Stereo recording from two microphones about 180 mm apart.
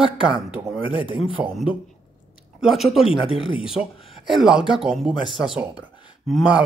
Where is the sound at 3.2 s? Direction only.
30° left (ahead or behind).